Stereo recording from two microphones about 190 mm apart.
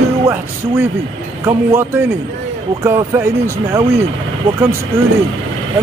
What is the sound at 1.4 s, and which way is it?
Speech, 15° right (ahead or behind).